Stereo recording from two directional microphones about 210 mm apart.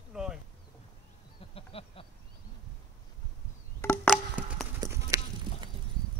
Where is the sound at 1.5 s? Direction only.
25° left (ahead or behind).